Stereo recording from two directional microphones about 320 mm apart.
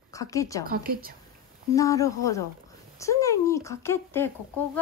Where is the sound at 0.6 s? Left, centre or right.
Right.